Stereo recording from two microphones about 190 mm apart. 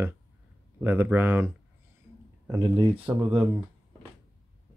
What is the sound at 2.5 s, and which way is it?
Speech, 25° right (ahead or behind).